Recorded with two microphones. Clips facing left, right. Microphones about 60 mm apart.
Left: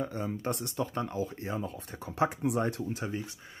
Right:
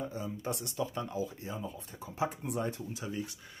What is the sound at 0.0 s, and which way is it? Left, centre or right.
Speech, left.